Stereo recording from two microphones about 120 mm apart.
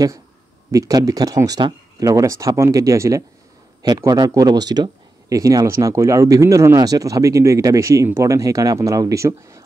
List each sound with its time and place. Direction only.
0.7 s speech: 30° right (ahead or behind)